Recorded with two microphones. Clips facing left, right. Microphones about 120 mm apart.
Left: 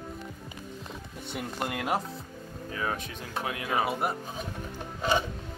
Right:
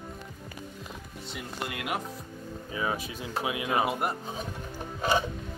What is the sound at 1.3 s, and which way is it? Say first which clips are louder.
Speech: left 4 dB; 45° left (ahead or behind).